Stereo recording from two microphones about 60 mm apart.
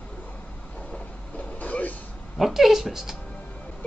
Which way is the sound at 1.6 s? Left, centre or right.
Left.